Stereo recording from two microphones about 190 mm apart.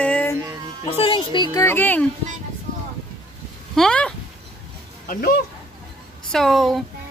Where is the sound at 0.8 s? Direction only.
25° left (ahead or behind).